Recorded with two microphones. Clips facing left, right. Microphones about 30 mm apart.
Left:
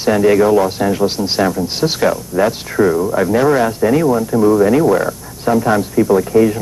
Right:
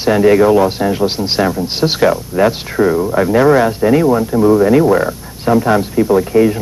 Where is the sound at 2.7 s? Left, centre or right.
Centre.